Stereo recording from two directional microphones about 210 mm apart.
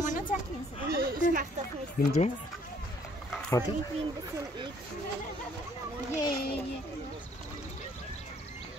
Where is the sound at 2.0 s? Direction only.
45° left (ahead or behind).